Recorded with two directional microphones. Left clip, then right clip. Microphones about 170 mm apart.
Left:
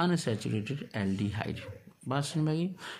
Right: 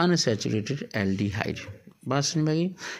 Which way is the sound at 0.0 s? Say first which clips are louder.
Right 7 dB; 20° right (ahead or behind).